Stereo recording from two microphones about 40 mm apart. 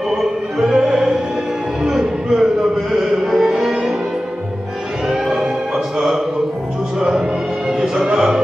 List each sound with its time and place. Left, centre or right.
0.2 s music: centre
5.0 s music: centre
5.9 s a sound: centre
7.0 s music: centre